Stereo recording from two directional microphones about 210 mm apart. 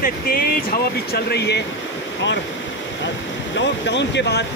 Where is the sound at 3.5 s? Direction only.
55° left (ahead or behind).